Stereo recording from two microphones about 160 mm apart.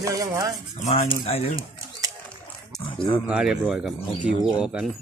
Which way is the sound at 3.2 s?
5° right (ahead or behind).